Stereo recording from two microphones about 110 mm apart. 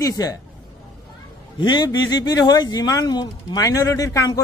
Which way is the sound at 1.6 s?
40° left (ahead or behind).